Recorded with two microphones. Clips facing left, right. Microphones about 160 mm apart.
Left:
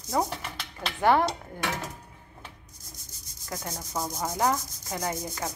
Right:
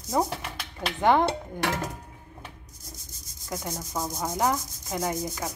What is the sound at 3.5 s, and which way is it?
Rub, 10° right (ahead or behind).